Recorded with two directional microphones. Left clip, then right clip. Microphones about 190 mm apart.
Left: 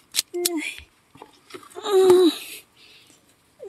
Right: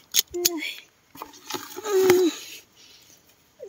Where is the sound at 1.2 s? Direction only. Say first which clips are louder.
Right 8 dB; 45° right (ahead or behind).